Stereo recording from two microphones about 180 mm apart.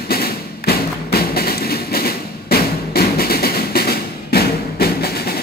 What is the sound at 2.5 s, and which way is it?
Music, 60° left (ahead or behind).